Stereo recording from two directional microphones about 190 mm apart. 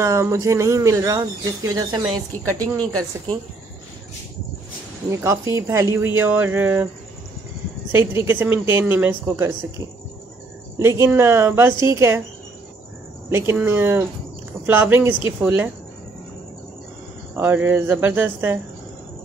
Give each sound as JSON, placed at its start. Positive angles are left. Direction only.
{"t": 0.0, "sound": "speech", "side_deg": -15}
{"t": 5.1, "sound": "speech", "side_deg": -15}
{"t": 7.9, "sound": "speech", "side_deg": -10}
{"t": 10.8, "sound": "speech", "side_deg": -15}
{"t": 13.3, "sound": "speech", "side_deg": -10}
{"t": 17.4, "sound": "speech", "side_deg": -10}